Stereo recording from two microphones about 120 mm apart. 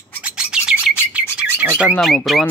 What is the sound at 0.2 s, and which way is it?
Bird, 5° right (ahead or behind).